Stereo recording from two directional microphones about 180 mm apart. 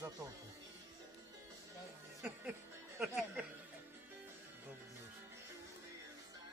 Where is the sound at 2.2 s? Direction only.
10° right (ahead or behind).